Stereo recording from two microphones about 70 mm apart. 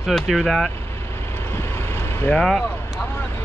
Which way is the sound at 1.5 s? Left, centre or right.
Left.